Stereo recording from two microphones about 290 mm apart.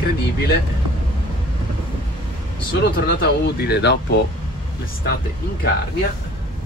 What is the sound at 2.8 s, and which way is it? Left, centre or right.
Speech, left.